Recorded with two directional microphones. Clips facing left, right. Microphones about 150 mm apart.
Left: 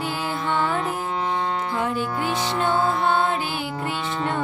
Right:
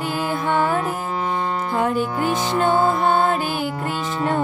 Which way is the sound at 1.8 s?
45° right (ahead or behind).